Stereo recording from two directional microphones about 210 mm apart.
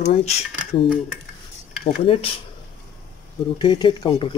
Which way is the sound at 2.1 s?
25° left (ahead or behind).